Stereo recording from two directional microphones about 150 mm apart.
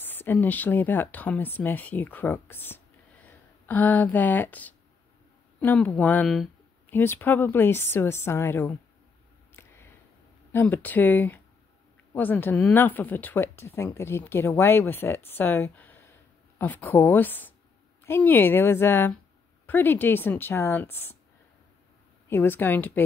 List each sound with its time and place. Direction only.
0.0 s speech: 15° left (ahead or behind)
6.9 s speech: 15° left (ahead or behind)
9.6 s a sound: 15° left (ahead or behind)
10.5 s speech: 15° left (ahead or behind)
22.3 s speech: 15° left (ahead or behind)